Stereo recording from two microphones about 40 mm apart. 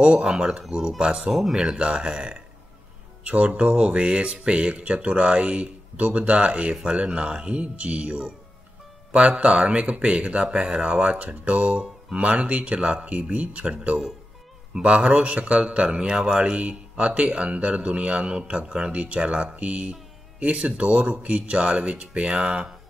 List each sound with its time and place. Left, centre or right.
0.2 s speech: centre
1.3 s speech: centre
1.6 s speech: right
3.3 s a man's voice: right
10.5 s speech: centre
10.8 s a man's voice: right